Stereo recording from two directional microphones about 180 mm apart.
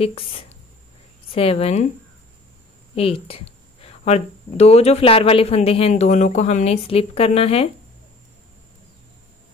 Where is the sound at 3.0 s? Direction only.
30° left (ahead or behind).